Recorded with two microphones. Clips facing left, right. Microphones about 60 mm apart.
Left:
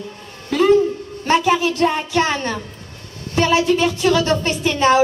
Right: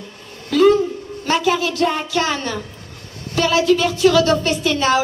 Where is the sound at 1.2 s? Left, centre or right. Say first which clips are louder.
Left 2 dB; left.